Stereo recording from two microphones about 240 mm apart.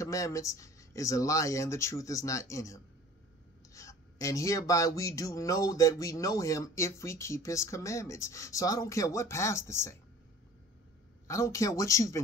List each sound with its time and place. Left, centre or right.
0.0 s speech: centre
11.2 s speech: centre